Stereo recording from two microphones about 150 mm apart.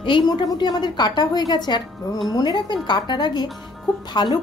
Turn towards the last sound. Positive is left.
turn(degrees=30)  # may be behind; listen again after turning